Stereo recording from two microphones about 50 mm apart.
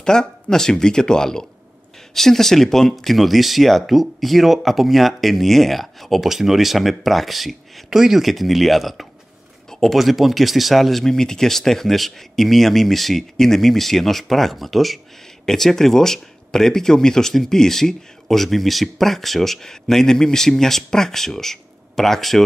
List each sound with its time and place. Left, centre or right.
0.0 s speech: centre